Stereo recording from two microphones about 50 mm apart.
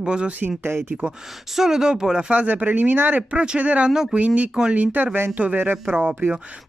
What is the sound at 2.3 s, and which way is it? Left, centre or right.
Speech, right.